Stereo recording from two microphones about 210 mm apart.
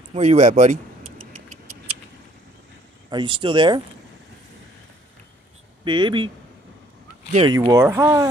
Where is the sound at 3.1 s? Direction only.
20° right (ahead or behind).